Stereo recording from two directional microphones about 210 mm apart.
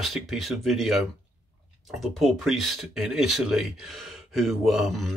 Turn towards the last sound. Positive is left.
turn(degrees=0)  # may be behind; listen again after turning